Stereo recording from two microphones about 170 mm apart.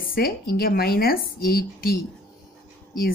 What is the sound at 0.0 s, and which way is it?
A woman's voice, 60° left (ahead or behind).